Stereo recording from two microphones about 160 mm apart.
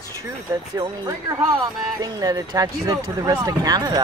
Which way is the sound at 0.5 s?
25° right (ahead or behind).